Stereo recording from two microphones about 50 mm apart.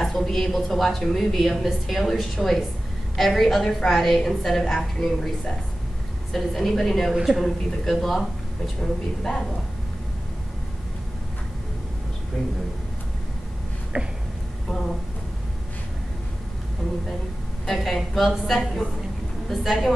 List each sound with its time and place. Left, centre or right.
0.0 s a woman's voice: centre
6.3 s a woman's voice: centre
7.2 s speech: centre
7.4 s a woman's voice: centre
13.9 s a sound: centre
17.6 s a woman's voice: centre